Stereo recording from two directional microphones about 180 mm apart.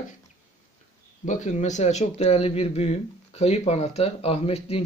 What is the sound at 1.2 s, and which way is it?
Speech, 45° left (ahead or behind).